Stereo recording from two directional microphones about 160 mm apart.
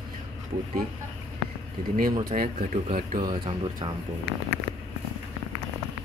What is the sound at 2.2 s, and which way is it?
Speech, 60° right (ahead or behind).